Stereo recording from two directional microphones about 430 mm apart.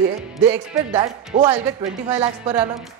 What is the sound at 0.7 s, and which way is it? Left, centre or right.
A woman's voice, centre.